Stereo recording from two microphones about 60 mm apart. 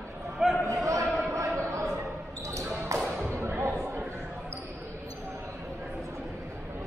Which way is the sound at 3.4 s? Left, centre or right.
Right.